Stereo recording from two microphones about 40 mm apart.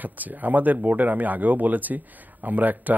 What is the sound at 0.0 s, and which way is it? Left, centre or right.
Speech, right.